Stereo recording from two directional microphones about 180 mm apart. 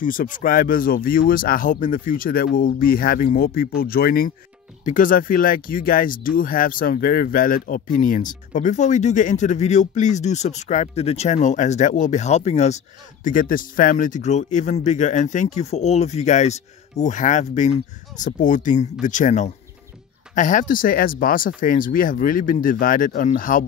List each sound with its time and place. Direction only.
0.0 s speech: 50° left (ahead or behind)